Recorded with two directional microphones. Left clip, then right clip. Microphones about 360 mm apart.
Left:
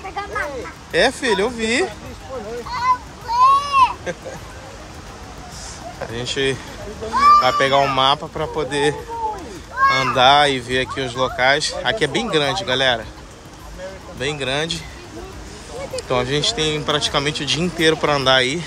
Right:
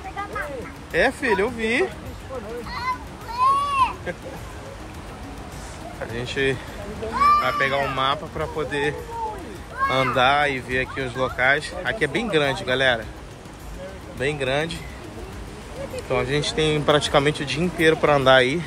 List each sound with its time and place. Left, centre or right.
0.9 s speech: centre
3.3 s a sound: centre
6.1 s speech: centre
14.2 s speech: centre
16.1 s speech: centre